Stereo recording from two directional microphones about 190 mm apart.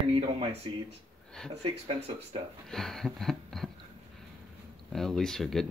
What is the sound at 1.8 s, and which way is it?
Speech, 30° right (ahead or behind).